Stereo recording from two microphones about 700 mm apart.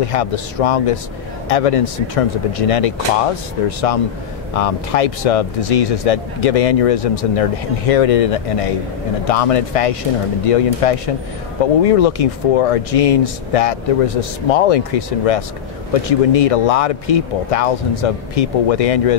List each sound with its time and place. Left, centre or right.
0.0 s speech: left